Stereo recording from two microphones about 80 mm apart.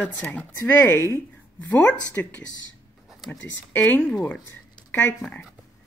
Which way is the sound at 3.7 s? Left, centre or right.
Left.